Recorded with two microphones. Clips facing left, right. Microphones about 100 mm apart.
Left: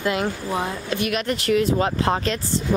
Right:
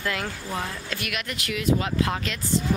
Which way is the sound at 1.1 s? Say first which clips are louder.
Left 12 dB; 35° left (ahead or behind).